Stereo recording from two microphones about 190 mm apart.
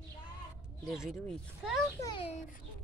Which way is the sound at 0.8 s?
5° right (ahead or behind).